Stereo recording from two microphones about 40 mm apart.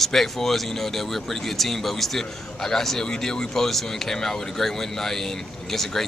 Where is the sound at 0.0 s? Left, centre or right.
Centre.